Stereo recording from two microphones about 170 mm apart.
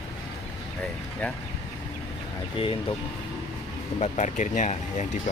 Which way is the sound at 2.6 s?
30° left (ahead or behind).